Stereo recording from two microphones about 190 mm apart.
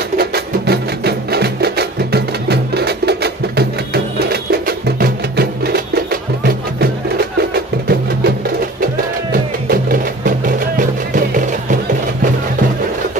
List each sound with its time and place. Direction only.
0.2 s music: 55° right (ahead or behind)
9.3 s music: 50° right (ahead or behind)